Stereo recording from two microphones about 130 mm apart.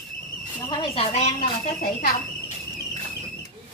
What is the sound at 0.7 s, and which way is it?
Speech, 45° left (ahead or behind).